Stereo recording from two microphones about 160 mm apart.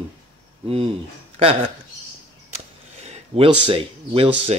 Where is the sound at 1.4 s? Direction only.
35° right (ahead or behind).